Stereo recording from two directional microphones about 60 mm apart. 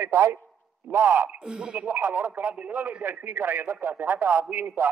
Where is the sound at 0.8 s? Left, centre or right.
Right.